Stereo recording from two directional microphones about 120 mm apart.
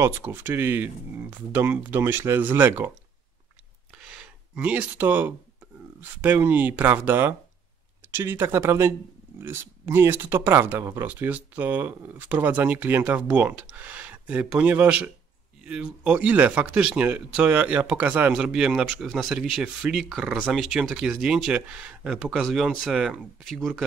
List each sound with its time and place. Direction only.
0.0 s speech: 20° right (ahead or behind)
3.9 s a sound: 5° right (ahead or behind)
5.9 s speech: 15° right (ahead or behind); by 23.8 s centre (ahead or behind)